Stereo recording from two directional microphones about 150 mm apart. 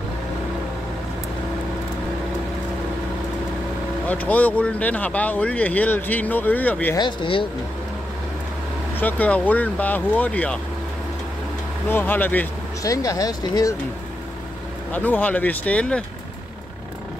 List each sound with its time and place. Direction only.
4.1 s speech: 10° left (ahead or behind)
7.0 s speech: 30° left (ahead or behind)
9.0 s speech: 10° left (ahead or behind)
11.9 s speech: 10° left (ahead or behind)
14.9 s speech: 10° left (ahead or behind)